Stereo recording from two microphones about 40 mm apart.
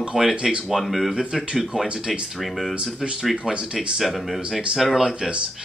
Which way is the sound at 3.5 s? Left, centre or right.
Right.